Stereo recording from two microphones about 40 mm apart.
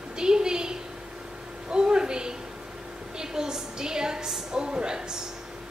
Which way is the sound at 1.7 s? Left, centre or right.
Centre.